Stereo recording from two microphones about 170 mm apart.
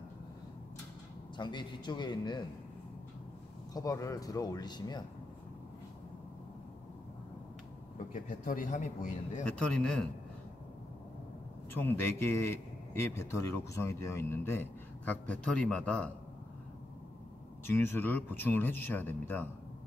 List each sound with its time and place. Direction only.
1.3 s speech: 25° left (ahead or behind)
3.7 s speech: 20° left (ahead or behind)
8.1 s a man's voice: 50° left (ahead or behind)
9.4 s a man's voice: 5° left (ahead or behind)
11.7 s a man's voice: 15° left (ahead or behind)
17.6 s a man's voice: 15° left (ahead or behind)